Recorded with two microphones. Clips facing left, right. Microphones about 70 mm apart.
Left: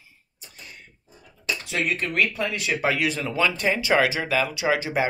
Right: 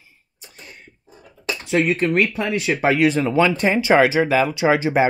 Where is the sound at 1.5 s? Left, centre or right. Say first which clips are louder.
Right 7 dB; right.